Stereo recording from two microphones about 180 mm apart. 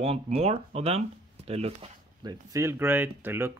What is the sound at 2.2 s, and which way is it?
Speech, 20° right (ahead or behind).